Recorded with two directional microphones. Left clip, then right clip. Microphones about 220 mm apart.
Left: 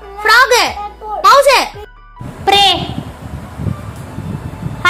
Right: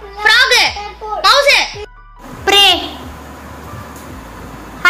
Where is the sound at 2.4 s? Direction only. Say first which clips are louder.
Even; centre (ahead or behind).